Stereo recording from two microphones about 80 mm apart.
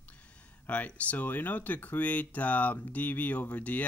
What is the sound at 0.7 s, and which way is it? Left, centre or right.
Speech, centre.